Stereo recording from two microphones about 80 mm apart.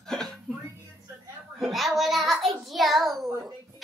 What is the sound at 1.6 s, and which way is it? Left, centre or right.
A child's voice, centre.